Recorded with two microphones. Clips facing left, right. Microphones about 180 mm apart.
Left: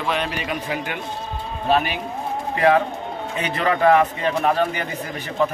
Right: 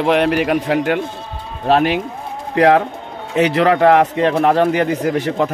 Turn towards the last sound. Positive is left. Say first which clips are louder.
# right 6 dB
turn(degrees=-90)